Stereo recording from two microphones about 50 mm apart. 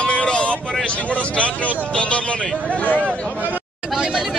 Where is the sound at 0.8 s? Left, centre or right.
Left.